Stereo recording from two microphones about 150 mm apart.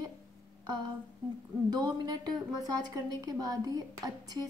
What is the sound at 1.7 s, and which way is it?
A woman's voice, 25° right (ahead or behind).